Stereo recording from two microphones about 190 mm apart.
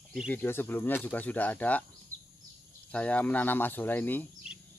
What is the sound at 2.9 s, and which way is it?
Speech, 10° left (ahead or behind).